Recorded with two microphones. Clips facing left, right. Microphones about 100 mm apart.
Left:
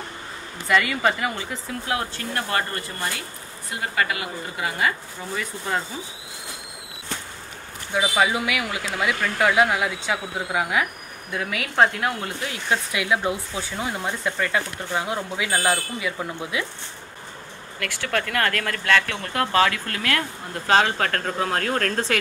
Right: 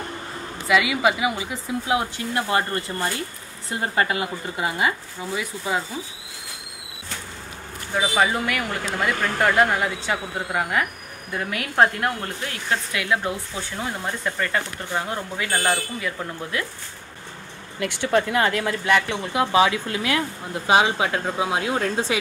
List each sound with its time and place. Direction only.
0.7 s speech: 5° right (ahead or behind); by 4.9 s 20° right (ahead or behind)
5.3 s speech: 10° right (ahead or behind)
7.9 s speech: centre (ahead or behind)
12.4 s speech: 10° left (ahead or behind)
17.7 s speech: 20° right (ahead or behind)